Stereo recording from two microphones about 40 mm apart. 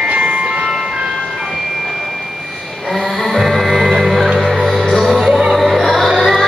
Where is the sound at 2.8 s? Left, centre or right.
Centre.